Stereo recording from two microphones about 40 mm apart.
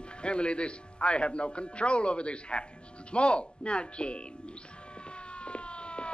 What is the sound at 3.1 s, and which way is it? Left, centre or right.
Speech, left.